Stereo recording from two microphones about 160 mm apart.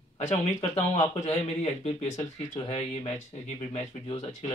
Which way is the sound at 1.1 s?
40° left (ahead or behind).